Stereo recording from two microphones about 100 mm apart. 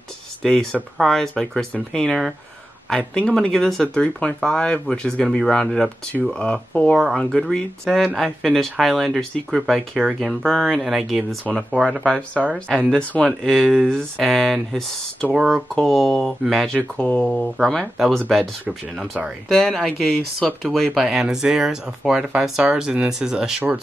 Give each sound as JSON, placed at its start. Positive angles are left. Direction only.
{"t": 0.4, "sound": "speech", "side_deg": 5}
{"t": 17.3, "sound": "speech", "side_deg": 0}
{"t": 19.5, "sound": "speech", "side_deg": 5}